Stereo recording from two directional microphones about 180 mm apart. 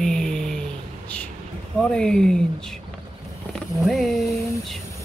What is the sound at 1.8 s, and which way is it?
Speech, 5° left (ahead or behind).